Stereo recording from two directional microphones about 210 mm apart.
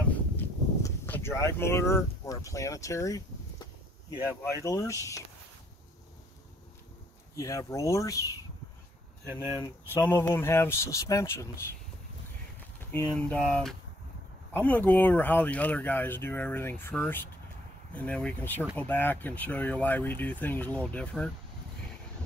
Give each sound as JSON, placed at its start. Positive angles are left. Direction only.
{"t": 0.4, "sound": "speech", "side_deg": 10}
{"t": 7.3, "sound": "speech", "side_deg": 15}
{"t": 9.3, "sound": "speech", "side_deg": -10}
{"t": 9.6, "sound": "speech", "side_deg": 15}
{"t": 12.9, "sound": "speech", "side_deg": 5}